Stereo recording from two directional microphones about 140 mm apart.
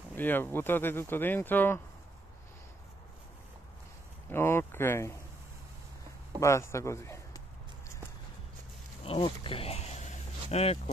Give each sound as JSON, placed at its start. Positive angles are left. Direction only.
{"t": 0.1, "sound": "speech", "side_deg": 15}
{"t": 4.3, "sound": "speech", "side_deg": 15}
{"t": 6.4, "sound": "a man's voice", "side_deg": 20}
{"t": 9.0, "sound": "speech", "side_deg": 40}